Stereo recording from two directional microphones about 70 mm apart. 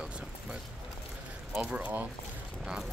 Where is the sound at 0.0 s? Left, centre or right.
Centre.